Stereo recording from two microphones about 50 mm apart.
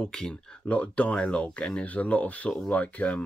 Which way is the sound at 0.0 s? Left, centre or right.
Centre.